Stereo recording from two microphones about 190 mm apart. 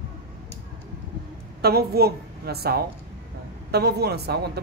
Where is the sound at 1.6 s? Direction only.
55° right (ahead or behind).